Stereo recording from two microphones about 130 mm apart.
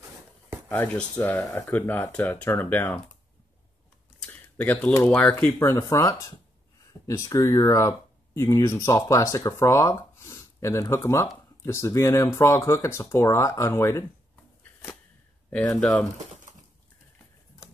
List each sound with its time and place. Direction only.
0.7 s speech: 15° left (ahead or behind)
4.2 s computer keyboard: 10° left (ahead or behind)
4.9 s speech: 10° left (ahead or behind)
14.6 s a sound: 15° left (ahead or behind)
15.5 s speech: 10° left (ahead or behind)